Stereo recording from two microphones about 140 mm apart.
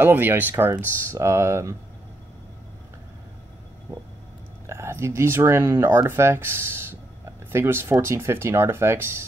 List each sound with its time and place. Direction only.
0.0 s speech: 15° right (ahead or behind)
4.6 s speech: 20° right (ahead or behind)